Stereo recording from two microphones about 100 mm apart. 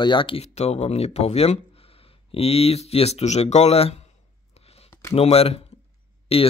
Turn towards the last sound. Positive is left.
turn(degrees=80)